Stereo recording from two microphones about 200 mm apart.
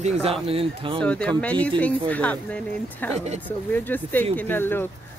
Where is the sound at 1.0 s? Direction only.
5° left (ahead or behind).